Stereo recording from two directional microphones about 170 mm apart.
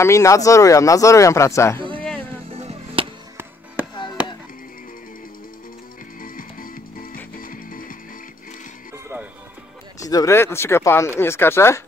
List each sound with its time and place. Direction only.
0.0 s speech: 20° left (ahead or behind)
1.8 s a sound: 30° right (ahead or behind)
2.4 s music: 35° right (ahead or behind)
6.2 s music: 55° left (ahead or behind)
8.9 s music: 15° right (ahead or behind)
9.9 s speech: 20° left (ahead or behind)